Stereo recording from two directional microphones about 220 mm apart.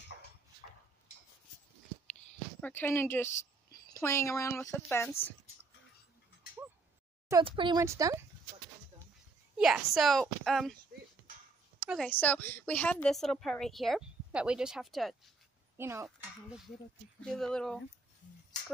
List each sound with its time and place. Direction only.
2.6 s speech: 10° left (ahead or behind)
7.2 s speech: 20° right (ahead or behind)
9.6 s a woman's voice: centre (ahead or behind)
11.8 s speech: 5° right (ahead or behind)
12.1 s a woman's voice: 5° left (ahead or behind)
15.8 s speech: 10° right (ahead or behind)
17.2 s a woman's voice: 5° left (ahead or behind)